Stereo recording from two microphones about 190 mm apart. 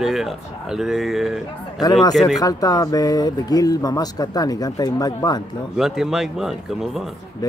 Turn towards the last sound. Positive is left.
turn(degrees=20)  # may be behind; listen again after turning